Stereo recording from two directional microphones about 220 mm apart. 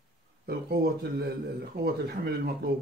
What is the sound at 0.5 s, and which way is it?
Speech, 45° right (ahead or behind).